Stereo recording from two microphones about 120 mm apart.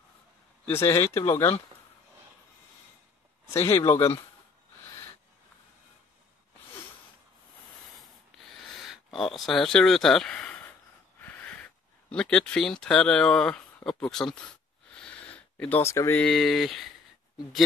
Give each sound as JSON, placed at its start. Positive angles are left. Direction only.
{"t": 0.7, "sound": "speech", "side_deg": 20}
{"t": 3.6, "sound": "speech", "side_deg": 25}
{"t": 8.5, "sound": "speech", "side_deg": 0}
{"t": 11.1, "sound": "a sound", "side_deg": 15}
{"t": 12.8, "sound": "speech", "side_deg": 5}
{"t": 15.0, "sound": "a sound", "side_deg": 10}
{"t": 15.8, "sound": "speech", "side_deg": 25}
{"t": 16.2, "sound": "speech", "side_deg": 5}